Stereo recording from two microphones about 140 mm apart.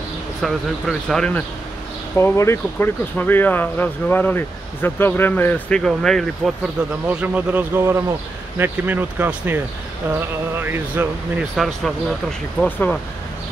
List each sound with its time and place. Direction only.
0.4 s speech: centre (ahead or behind)
2.1 s speech: 20° left (ahead or behind)
6.8 s a man's voice: 10° right (ahead or behind)
10.6 s a man's voice: 15° right (ahead or behind)
11.5 s speech: centre (ahead or behind)